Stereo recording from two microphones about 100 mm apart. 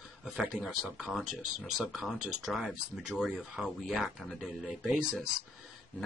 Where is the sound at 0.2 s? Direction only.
5° right (ahead or behind).